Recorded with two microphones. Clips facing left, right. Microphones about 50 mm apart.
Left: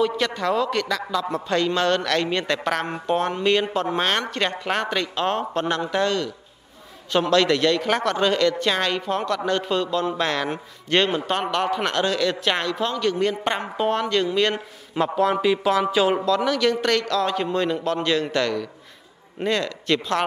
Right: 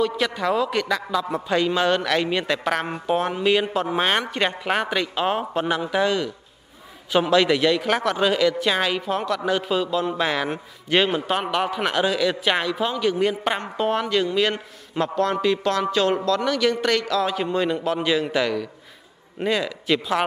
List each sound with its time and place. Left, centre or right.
0.0 s a man's voice: centre
13.4 s speech: centre